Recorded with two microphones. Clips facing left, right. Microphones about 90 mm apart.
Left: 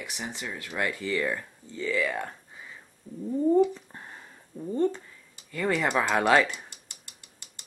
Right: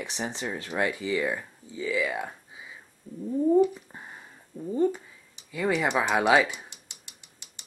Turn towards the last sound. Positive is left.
turn(degrees=-15)  # may be behind; listen again after turning